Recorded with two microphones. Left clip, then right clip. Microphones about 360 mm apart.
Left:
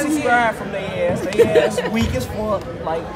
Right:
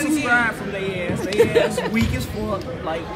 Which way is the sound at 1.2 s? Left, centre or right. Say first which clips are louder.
Left 2 dB; centre.